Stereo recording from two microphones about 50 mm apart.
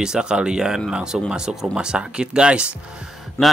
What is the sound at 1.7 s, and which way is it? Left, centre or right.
Speech, centre.